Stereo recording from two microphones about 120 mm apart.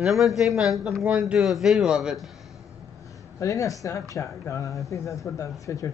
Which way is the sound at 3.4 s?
30° left (ahead or behind).